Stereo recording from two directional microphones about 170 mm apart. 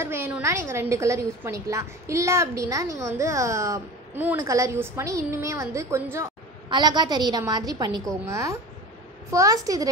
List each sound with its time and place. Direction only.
0.0 s a woman's voice: 15° right (ahead or behind)